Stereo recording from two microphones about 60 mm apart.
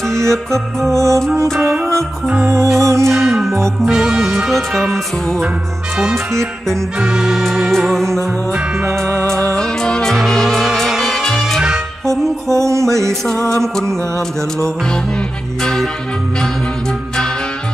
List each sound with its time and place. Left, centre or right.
0.3 s music: centre
0.9 s music: right
1.3 s music: right
3.1 s music: centre
4.5 s music: centre
7.0 s music: centre
7.7 s music: centre
8.8 s music: right
9.6 s music: centre
12.1 s music: right
13.5 s music: centre
15.6 s music: centre